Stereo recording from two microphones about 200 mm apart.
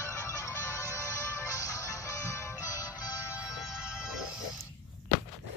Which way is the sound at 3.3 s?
5° right (ahead or behind).